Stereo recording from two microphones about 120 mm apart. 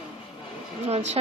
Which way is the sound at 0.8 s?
60° right (ahead or behind).